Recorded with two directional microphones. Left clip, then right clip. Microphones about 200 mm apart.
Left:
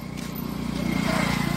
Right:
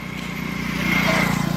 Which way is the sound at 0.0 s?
30° right (ahead or behind).